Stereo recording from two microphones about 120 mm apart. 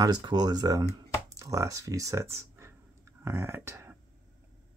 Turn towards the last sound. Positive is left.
turn(degrees=-20)  # may be behind; listen again after turning